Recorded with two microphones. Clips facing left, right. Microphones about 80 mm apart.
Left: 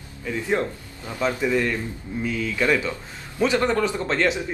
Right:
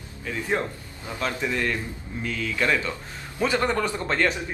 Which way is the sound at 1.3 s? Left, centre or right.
Centre.